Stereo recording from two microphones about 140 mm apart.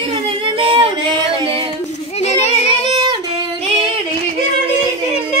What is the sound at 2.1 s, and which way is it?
Child singing, 50° left (ahead or behind).